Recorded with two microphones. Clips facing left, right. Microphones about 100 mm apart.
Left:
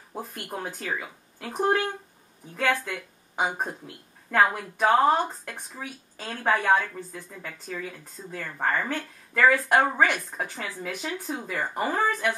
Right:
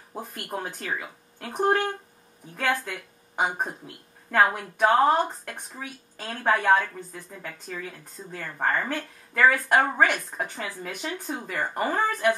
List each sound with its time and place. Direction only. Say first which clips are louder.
0.1 s speech: right 1 dB; centre (ahead or behind)
2.5 s speech: left 1 dB; 5° right (ahead or behind)